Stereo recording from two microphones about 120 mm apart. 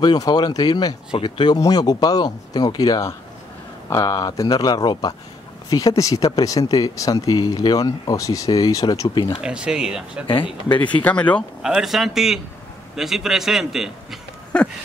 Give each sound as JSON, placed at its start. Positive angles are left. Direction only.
{"t": 0.0, "sound": "speech", "side_deg": 35}
{"t": 9.4, "sound": "speech", "side_deg": -10}
{"t": 10.2, "sound": "speech", "side_deg": 45}
{"t": 10.9, "sound": "speech", "side_deg": 10}
{"t": 11.6, "sound": "a man's voice", "side_deg": -5}
{"t": 14.5, "sound": "speech", "side_deg": 10}